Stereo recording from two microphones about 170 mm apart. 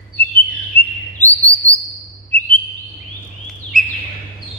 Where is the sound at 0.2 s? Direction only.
35° right (ahead or behind).